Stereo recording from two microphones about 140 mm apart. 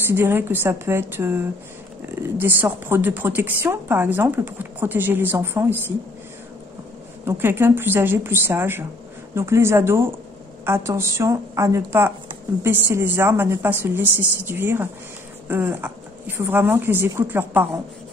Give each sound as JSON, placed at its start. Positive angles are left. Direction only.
{"t": 0.0, "sound": "speech", "side_deg": -15}
{"t": 7.2, "sound": "a woman's voice", "side_deg": -15}